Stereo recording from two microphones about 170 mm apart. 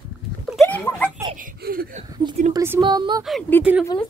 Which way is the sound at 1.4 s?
60° right (ahead or behind).